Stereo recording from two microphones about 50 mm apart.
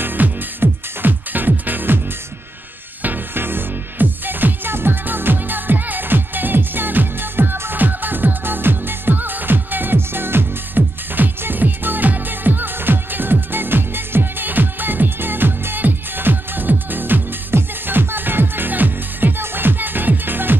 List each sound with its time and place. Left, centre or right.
0.0 s music: right
3.0 s music: right